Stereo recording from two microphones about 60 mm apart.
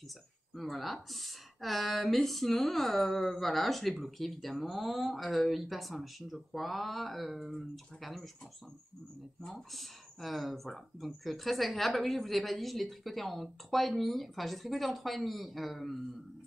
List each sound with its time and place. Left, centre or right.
0.6 s speech: centre
9.5 s speech: centre